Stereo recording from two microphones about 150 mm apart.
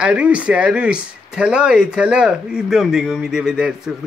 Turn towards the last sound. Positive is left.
turn(degrees=-5)  # may be behind; listen again after turning